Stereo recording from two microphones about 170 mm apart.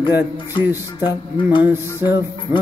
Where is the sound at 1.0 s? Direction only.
25° left (ahead or behind).